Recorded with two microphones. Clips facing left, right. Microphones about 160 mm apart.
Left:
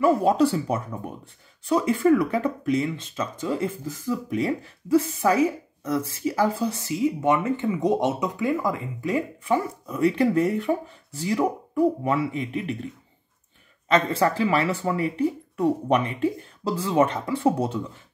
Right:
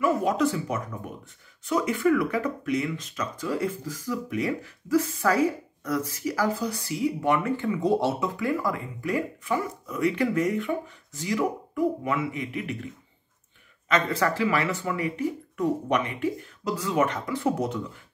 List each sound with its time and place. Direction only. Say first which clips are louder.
0.0 s speech: left 4 dB; 30° left (ahead or behind)
13.8 s speech: left 3 dB; 30° left (ahead or behind)